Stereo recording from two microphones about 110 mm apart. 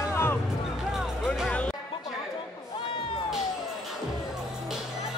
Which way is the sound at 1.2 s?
5° right (ahead or behind).